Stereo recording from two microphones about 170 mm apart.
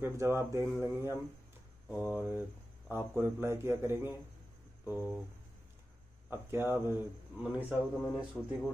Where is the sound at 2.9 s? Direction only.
15° right (ahead or behind).